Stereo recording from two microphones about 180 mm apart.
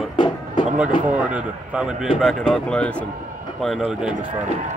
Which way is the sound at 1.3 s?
5° right (ahead or behind).